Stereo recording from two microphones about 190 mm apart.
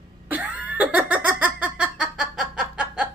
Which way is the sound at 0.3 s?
5° right (ahead or behind).